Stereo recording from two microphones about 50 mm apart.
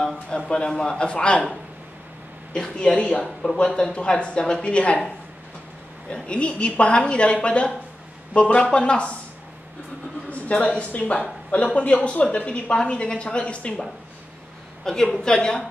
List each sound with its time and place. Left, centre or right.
0.0 s a sound: centre
0.5 s a woman's voice: centre
2.5 s a woman's voice: centre
6.0 s a woman's voice: left
8.5 s a woman's voice: centre
10.3 s a woman's voice: left
14.9 s a man's voice: centre